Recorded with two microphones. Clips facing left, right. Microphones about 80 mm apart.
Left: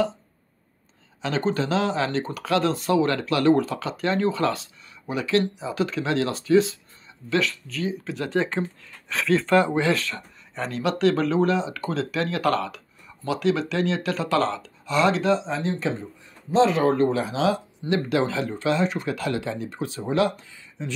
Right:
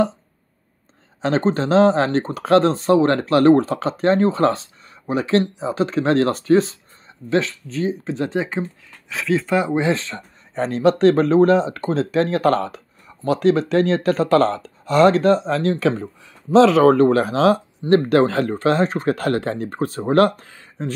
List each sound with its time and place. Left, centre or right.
1.2 s speech: right
7.2 s speech: right
8.4 s speech: centre
10.5 s speech: right
16.5 s speech: right
17.2 s speech: right